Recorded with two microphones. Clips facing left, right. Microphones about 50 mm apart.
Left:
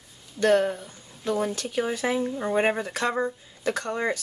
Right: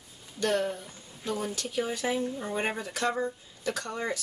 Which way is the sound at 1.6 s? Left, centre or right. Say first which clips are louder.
Left 4 dB; left.